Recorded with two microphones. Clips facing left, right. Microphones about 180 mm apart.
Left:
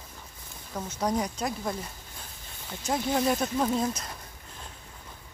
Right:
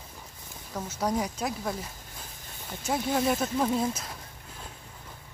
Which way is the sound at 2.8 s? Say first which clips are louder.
Even; 5° right (ahead or behind).